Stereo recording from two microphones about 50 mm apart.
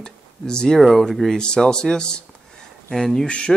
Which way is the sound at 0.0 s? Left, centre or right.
Centre.